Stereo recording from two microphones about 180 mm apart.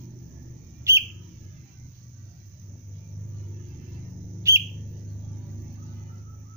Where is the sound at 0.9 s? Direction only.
15° right (ahead or behind).